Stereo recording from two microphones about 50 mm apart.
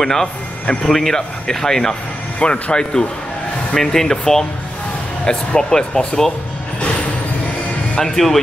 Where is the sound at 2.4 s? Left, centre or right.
Left.